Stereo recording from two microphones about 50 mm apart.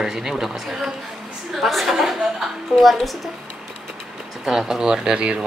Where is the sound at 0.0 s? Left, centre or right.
Centre.